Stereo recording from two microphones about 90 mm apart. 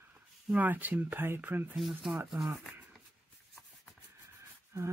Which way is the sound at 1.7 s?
Centre (ahead or behind).